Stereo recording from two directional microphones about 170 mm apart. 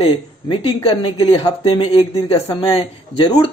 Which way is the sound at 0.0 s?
30° left (ahead or behind).